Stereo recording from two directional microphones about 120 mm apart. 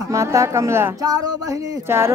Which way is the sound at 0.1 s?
25° right (ahead or behind).